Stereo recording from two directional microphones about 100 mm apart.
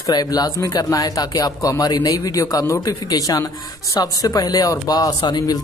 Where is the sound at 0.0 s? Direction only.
40° left (ahead or behind).